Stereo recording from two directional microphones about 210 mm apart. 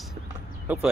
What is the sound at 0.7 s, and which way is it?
Speech, 10° right (ahead or behind).